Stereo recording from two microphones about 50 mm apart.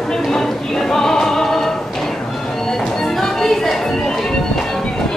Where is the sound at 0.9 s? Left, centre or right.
Centre.